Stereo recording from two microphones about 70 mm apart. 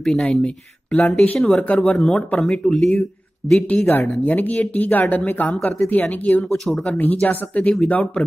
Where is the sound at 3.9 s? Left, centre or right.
Left.